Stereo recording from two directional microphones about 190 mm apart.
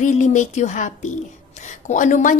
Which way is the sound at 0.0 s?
40° left (ahead or behind).